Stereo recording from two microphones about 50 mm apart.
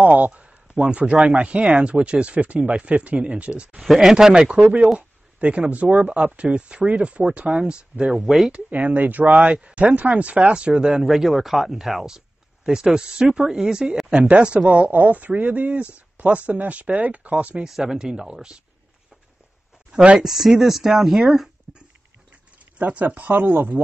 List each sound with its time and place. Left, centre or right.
0.0 s speech: right
3.8 s speech: centre
4.5 s speech: right
8.2 s speech: centre
8.5 s speech: right
17.6 s speech: centre
19.9 s speech: centre
20.2 s speech: centre
21.7 s dog: centre
22.8 s speech: right